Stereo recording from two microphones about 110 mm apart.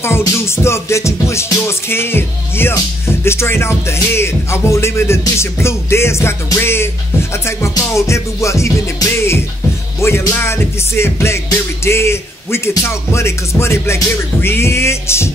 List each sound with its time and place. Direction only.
0.0 s speech: 25° left (ahead or behind)